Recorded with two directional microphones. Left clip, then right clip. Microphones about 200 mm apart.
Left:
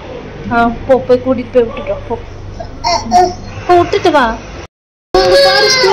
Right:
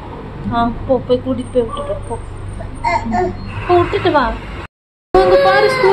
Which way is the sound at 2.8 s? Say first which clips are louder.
Left 7 dB; 55° left (ahead or behind).